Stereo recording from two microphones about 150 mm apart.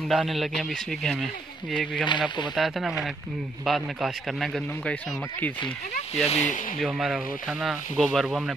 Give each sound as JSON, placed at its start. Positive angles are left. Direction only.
{"t": 0.1, "sound": "speech", "side_deg": 0}
{"t": 2.0, "sound": "speech", "side_deg": 30}
{"t": 2.5, "sound": "speech", "side_deg": 0}
{"t": 6.2, "sound": "speech", "side_deg": 50}
{"t": 6.8, "sound": "speech", "side_deg": 0}